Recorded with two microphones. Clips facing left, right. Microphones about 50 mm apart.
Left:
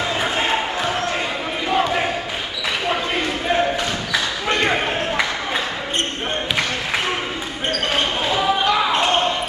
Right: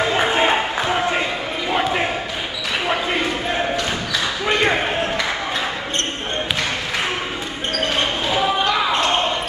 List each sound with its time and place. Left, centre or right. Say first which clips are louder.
0.4 s a sound: right 2 dB; centre
1.7 s basketball bounce: left 1 dB; centre
4.5 s basketball bounce: right 1 dB; centre
8.3 s basketball bounce: left 1 dB; centre